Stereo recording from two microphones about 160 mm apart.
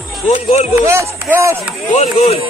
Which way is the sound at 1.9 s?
40° left (ahead or behind).